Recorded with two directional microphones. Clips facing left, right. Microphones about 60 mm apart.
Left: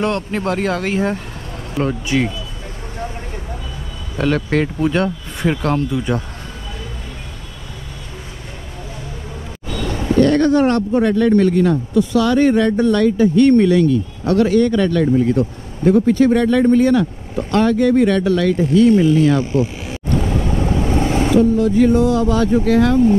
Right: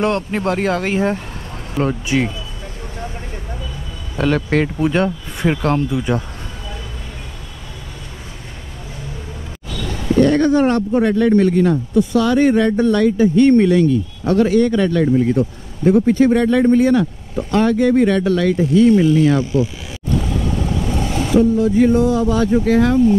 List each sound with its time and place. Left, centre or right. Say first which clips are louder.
0.0 s speech: right 1 dB; centre
4.2 s speech: right 1 dB; centre
9.7 s a sound: left 3 dB; left
10.2 s a sound: even; centre
10.9 s speech: even; centre
20.2 s vehicle: left 2 dB; left
21.4 s speech: right 1 dB; centre